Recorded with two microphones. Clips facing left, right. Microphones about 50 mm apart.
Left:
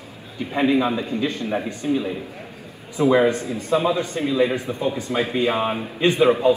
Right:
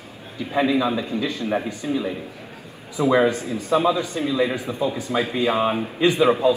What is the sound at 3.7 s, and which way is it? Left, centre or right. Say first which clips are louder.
Speech: right 1 dB; right.